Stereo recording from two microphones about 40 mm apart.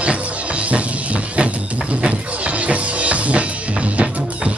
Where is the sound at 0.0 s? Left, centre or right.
Right.